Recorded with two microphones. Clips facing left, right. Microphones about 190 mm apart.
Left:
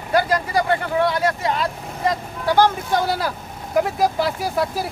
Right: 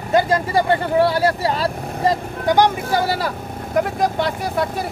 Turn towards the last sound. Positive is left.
turn(degrees=0)  # may be behind; listen again after turning